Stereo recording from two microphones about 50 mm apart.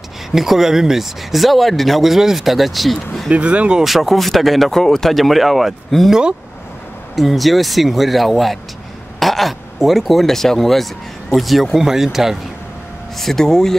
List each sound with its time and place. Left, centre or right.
0.3 s speech: centre
3.3 s speech: right
3.8 s speech: centre
7.2 s speech: centre
13.2 s speech: centre